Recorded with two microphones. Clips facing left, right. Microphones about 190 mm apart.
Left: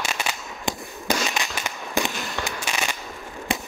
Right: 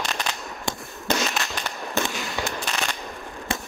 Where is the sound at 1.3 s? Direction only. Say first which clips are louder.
Even; 10° left (ahead or behind).